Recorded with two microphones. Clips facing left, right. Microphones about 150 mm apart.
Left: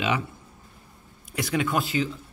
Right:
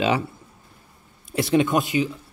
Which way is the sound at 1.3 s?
25° right (ahead or behind).